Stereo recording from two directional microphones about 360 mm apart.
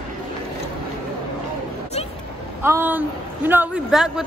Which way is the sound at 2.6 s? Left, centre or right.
Centre.